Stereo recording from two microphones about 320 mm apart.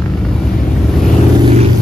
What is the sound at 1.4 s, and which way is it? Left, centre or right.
Vehicle, centre.